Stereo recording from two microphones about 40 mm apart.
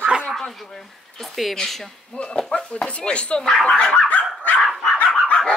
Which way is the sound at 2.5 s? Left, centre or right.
Left.